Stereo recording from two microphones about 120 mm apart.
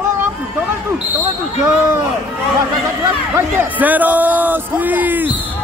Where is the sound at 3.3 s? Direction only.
15° right (ahead or behind).